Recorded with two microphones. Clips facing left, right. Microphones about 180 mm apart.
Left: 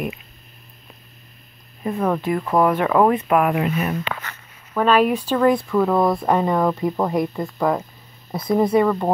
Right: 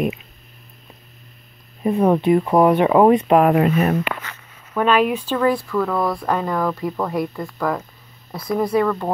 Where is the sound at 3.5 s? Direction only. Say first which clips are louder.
Right 5 dB; 45° right (ahead or behind).